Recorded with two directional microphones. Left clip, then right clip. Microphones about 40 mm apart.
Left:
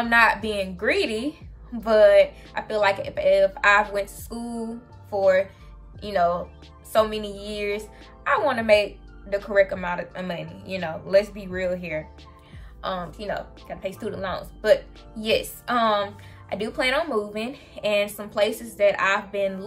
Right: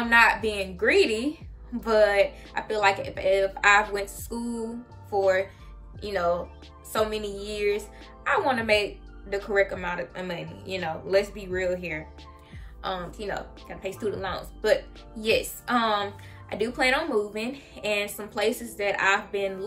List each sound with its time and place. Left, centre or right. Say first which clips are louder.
0.0 s a woman's voice: left 1 dB; left
5.9 s a woman's voice: left 4 dB; left
15.1 s speech: left 1 dB; left